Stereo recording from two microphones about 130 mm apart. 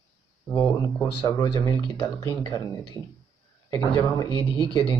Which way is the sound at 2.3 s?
35° left (ahead or behind).